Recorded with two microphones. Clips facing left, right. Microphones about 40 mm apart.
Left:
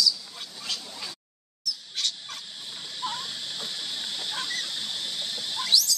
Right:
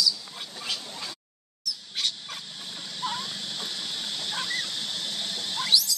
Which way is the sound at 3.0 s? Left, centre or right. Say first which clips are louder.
Right 1 dB; centre.